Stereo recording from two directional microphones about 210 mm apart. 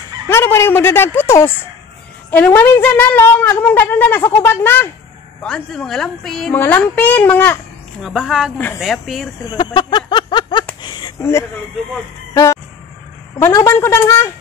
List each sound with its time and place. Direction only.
0.3 s a woman's voice: 10° left (ahead or behind)
8.0 s speech: 5° right (ahead or behind)
9.4 s a sound: 20° left (ahead or behind)
13.4 s a woman's voice: 15° left (ahead or behind)